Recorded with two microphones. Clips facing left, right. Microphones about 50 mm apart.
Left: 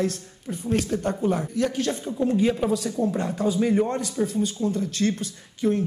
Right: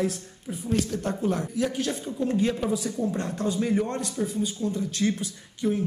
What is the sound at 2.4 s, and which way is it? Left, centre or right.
Speech, centre.